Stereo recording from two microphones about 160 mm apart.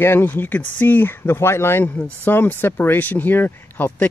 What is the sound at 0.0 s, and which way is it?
Speech, 15° left (ahead or behind).